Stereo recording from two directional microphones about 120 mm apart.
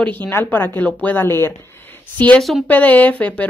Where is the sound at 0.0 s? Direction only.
15° left (ahead or behind).